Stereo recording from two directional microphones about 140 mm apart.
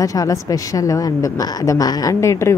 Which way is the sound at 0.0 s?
25° left (ahead or behind).